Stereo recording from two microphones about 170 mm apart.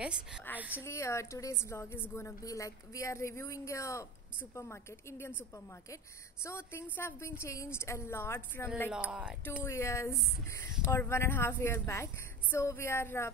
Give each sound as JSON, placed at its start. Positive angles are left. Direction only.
{"t": 0.0, "sound": "a woman's voice", "side_deg": -5}
{"t": 0.8, "sound": "a woman's voice", "side_deg": 15}
{"t": 6.4, "sound": "a woman's voice", "side_deg": 15}
{"t": 9.1, "sound": "a woman's voice", "side_deg": -5}
{"t": 9.6, "sound": "a woman's voice", "side_deg": 15}